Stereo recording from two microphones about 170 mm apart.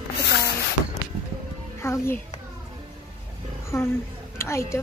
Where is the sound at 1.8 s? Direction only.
15° left (ahead or behind).